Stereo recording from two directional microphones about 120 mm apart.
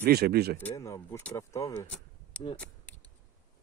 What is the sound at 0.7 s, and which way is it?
A man's voice, 25° left (ahead or behind).